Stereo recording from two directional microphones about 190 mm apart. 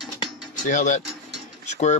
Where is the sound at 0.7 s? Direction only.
40° left (ahead or behind).